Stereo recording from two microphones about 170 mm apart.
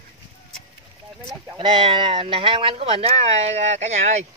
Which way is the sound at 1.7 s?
30° right (ahead or behind).